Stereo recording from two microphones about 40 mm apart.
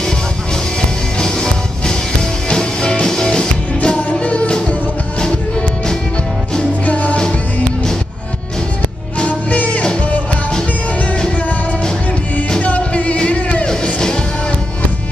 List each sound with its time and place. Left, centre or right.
0.7 s music: centre
6.9 s music: left
9.5 s music: left
12.4 s music: left